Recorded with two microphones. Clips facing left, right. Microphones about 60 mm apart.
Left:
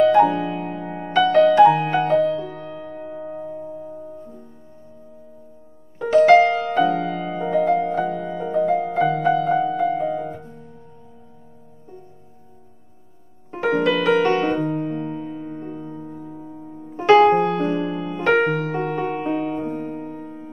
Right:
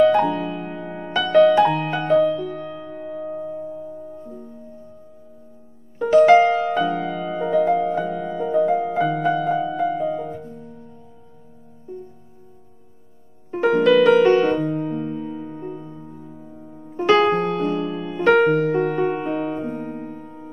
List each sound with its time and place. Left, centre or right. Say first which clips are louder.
0.0 s music: left 1 dB; centre
2.4 s music: right 3 dB; left
2.7 s music: right 1 dB; centre
5.9 s music: even; centre
13.5 s music: right 4 dB; centre
16.9 s music: left 3 dB; centre